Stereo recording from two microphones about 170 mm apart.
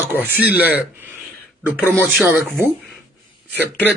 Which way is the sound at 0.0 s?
10° right (ahead or behind).